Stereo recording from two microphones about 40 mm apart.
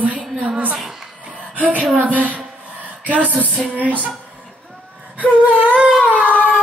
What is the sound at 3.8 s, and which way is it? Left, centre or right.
Speech, right.